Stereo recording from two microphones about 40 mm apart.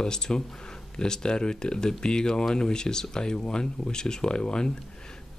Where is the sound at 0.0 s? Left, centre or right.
Centre.